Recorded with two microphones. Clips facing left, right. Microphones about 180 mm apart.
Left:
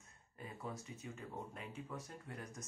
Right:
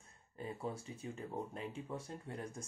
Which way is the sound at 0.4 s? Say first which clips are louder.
Right 5 dB; 30° right (ahead or behind).